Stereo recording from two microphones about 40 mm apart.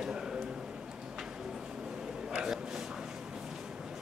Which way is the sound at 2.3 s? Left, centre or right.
Centre.